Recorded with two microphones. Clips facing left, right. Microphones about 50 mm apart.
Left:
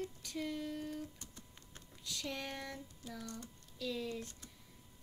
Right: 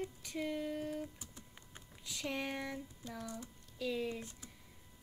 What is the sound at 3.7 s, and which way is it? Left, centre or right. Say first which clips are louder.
Speech: right 2 dB; right.